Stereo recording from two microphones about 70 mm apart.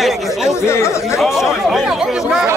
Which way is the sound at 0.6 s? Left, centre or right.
Left.